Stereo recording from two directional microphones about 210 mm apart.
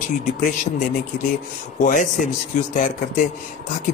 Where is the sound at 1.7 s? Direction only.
40° left (ahead or behind).